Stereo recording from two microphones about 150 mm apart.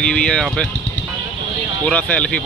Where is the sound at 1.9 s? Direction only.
10° left (ahead or behind).